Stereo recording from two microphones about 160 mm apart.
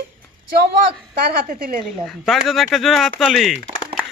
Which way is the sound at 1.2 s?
70° right (ahead or behind).